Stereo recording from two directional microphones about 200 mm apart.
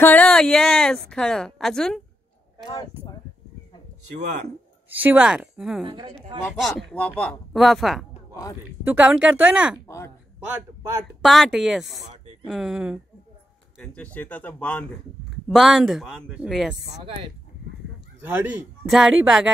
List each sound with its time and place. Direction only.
0.0 s a man's voice: 5° left (ahead or behind)
2.6 s speech: 20° left (ahead or behind)
4.9 s a man's voice: 10° right (ahead or behind)
9.8 s speech: 15° left (ahead or behind)
11.2 s a man's voice: centre (ahead or behind)
12.0 s a sound: 35° right (ahead or behind)
12.4 s a man's voice: centre (ahead or behind)
13.7 s a man's voice: 5° left (ahead or behind)
18.2 s a man's voice: 10° right (ahead or behind)